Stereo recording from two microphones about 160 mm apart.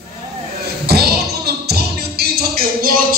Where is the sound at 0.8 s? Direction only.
80° right; by 3.2 s 65° right (ahead or behind).